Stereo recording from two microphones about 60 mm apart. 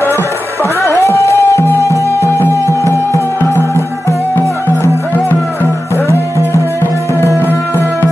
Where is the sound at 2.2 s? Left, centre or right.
Left.